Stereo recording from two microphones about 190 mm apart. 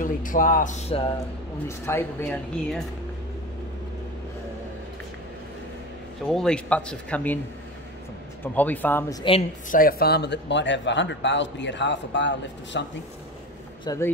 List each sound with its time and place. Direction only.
0.0 s speech: 45° left (ahead or behind)
1.9 s speech: 10° left (ahead or behind)
6.2 s speech: 5° left (ahead or behind)
8.5 s speech: 10° left (ahead or behind)
9.7 s a man's voice: 50° left (ahead or behind); by 12.8 s 70° left (ahead or behind)
13.8 s speech: 15° left (ahead or behind)